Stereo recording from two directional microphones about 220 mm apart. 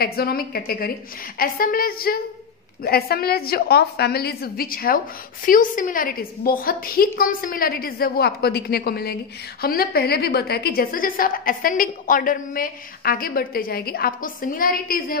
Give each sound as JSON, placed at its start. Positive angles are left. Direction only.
{"t": 0.0, "sound": "a woman's voice", "side_deg": 45}